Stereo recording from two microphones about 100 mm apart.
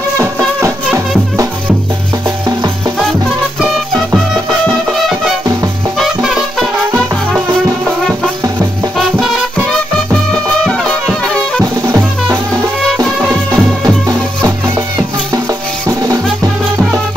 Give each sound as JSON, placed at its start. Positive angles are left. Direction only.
{"t": 3.0, "sound": "music", "side_deg": 0}
{"t": 5.9, "sound": "music", "side_deg": -5}
{"t": 10.6, "sound": "music", "side_deg": 5}
{"t": 11.6, "sound": "music", "side_deg": -35}
{"t": 13.5, "sound": "music", "side_deg": -35}
{"t": 15.9, "sound": "music", "side_deg": -40}